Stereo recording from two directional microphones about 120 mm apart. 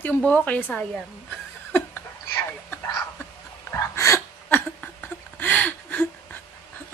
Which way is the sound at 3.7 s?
25° left (ahead or behind).